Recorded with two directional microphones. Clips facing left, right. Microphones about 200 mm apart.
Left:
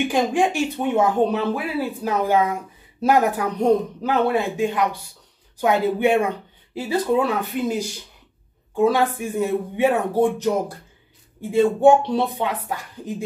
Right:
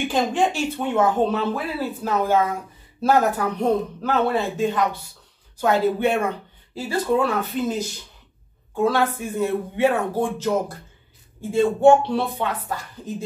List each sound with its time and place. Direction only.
0.1 s speech: 10° left (ahead or behind)
11.5 s speech: 15° left (ahead or behind)